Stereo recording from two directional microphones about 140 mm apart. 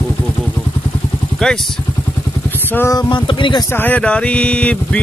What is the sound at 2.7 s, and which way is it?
Speech, 20° left (ahead or behind).